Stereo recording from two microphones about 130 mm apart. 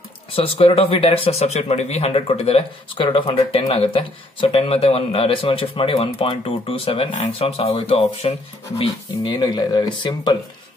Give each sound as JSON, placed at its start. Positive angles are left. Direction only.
{"t": 0.4, "sound": "speech", "side_deg": 45}
{"t": 9.2, "sound": "speech", "side_deg": 35}